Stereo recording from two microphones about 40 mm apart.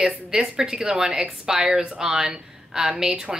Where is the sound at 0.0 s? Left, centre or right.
Centre.